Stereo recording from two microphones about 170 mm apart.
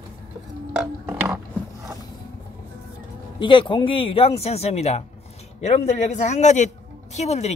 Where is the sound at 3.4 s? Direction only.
30° left (ahead or behind).